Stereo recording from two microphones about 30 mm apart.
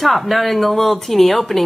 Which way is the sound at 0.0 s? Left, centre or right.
Centre.